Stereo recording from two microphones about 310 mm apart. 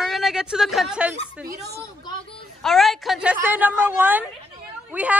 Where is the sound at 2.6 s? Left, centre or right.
Centre.